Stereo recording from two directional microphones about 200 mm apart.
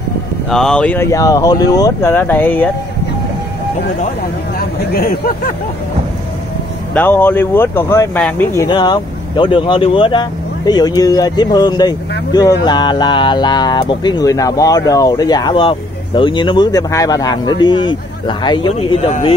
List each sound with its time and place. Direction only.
0.5 s speech: 5° left (ahead or behind)
4.9 s speech: 50° left (ahead or behind)
6.9 s speech: 10° left (ahead or behind)
8.6 s speech: 20° left (ahead or behind)